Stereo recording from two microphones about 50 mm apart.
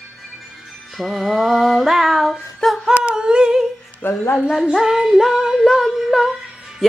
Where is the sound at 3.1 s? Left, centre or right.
Centre.